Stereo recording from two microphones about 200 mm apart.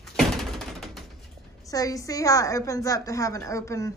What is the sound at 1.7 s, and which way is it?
Speech, 15° left (ahead or behind).